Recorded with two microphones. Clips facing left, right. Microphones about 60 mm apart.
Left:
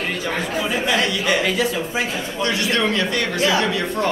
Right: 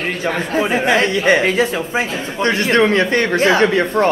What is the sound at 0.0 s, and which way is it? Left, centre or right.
Speech, right.